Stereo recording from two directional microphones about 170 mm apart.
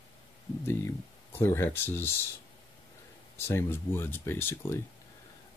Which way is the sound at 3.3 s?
15° left (ahead or behind).